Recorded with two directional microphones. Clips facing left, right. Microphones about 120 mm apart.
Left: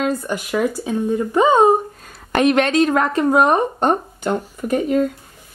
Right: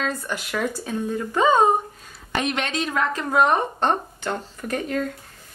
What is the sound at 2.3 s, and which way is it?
Speech, 50° left (ahead or behind).